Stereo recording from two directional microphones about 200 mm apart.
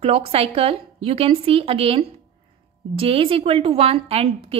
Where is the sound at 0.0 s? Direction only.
30° right (ahead or behind).